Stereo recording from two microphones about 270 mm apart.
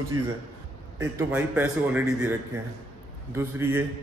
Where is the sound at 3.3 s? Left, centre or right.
Centre.